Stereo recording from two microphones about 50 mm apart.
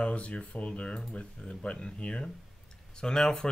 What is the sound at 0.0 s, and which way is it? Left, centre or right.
Speech, left.